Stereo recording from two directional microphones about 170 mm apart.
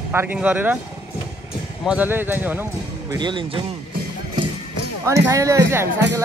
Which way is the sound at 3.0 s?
25° right (ahead or behind).